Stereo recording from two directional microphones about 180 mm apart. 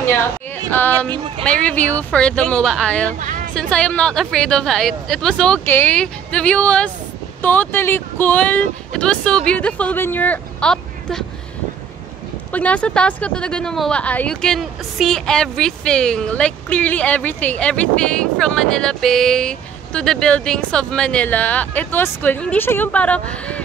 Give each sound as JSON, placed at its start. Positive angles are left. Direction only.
{"t": 0.7, "sound": "speech", "side_deg": 10}
{"t": 1.1, "sound": "speech", "side_deg": -30}
{"t": 1.4, "sound": "speech", "side_deg": 5}
{"t": 3.2, "sound": "hubbub", "side_deg": -45}
{"t": 3.5, "sound": "speech", "side_deg": 5}
{"t": 12.5, "sound": "speech", "side_deg": 5}